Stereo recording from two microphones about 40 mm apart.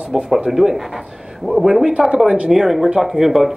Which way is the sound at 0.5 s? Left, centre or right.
Centre.